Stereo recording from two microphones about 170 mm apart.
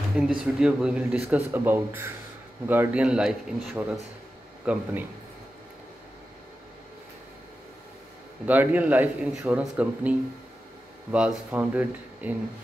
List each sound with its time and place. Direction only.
0.1 s speech: 5° right (ahead or behind)
8.5 s speech: 10° right (ahead or behind)